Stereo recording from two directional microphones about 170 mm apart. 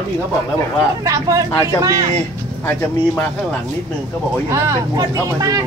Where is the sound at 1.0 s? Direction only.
20° right (ahead or behind).